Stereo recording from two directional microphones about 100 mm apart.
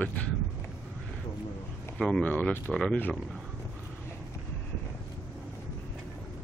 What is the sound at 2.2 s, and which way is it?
Speech, 15° left (ahead or behind).